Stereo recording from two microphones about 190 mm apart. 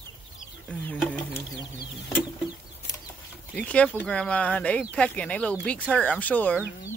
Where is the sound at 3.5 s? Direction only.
5° left (ahead or behind).